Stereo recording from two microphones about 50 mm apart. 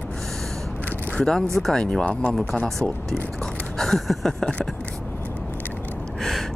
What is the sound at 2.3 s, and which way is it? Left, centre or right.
Speech, centre.